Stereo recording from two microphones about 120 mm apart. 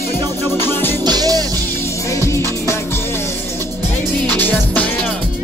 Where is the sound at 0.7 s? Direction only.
15° left (ahead or behind).